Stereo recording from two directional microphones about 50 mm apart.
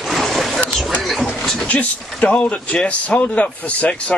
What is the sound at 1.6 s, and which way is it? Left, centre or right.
Speech, left.